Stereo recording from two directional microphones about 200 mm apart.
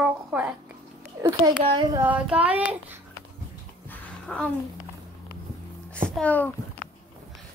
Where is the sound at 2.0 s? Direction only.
5° right (ahead or behind).